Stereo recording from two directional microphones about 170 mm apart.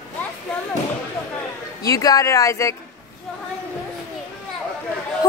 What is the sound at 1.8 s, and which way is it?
Speech, 20° left (ahead or behind).